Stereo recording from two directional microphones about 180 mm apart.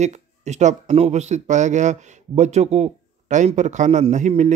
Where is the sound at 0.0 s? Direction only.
40° right (ahead or behind).